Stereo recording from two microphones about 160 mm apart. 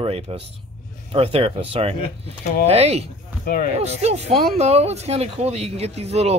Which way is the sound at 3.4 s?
55° left (ahead or behind).